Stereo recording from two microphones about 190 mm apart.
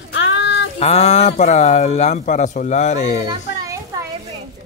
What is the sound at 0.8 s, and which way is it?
Speech, 35° left (ahead or behind).